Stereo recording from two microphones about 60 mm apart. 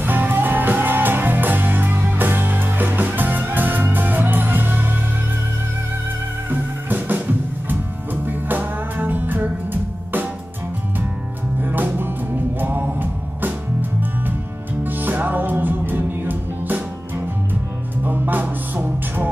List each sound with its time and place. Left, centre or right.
0.0 s music: right
6.5 s music: right
11.6 s music: right
18.0 s music: right